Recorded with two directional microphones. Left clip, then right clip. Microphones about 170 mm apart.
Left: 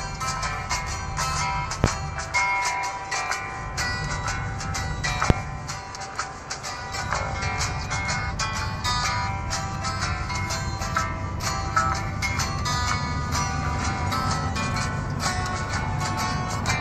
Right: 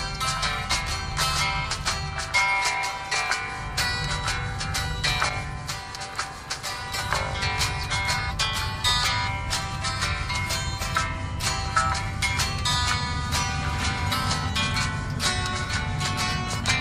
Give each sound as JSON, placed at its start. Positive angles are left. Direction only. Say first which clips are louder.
{"t": 0.2, "sound": "music", "louder": "right 2 dB", "side_deg": -25}
{"t": 7.1, "sound": "music", "louder": "right 1 dB", "side_deg": -25}